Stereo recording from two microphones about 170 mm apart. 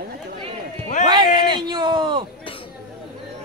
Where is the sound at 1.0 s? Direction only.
25° right (ahead or behind).